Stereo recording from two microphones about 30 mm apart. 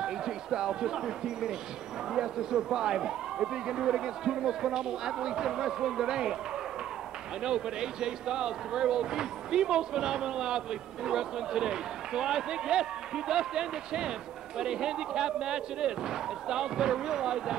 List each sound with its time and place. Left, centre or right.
0.0 s a sound: right
1.0 s speech: centre
7.4 s speech: right